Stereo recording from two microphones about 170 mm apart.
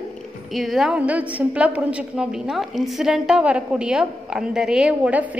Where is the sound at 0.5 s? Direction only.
Centre (ahead or behind).